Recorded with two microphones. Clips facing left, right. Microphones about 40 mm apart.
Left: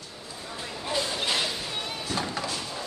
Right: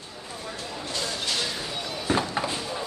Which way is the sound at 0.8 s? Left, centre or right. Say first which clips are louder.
Left 3 dB; centre.